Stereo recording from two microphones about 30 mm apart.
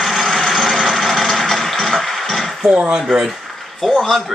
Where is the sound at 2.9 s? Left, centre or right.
Right.